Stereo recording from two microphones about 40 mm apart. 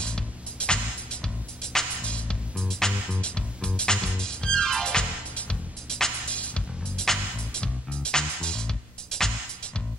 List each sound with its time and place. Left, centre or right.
0.0 s music: left
2.0 s music: left
2.5 s music: centre
6.3 s music: left
7.0 s music: centre